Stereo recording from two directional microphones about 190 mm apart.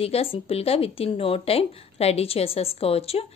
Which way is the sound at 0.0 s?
30° left (ahead or behind).